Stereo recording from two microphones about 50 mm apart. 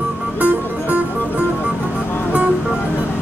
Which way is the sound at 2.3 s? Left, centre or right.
Right.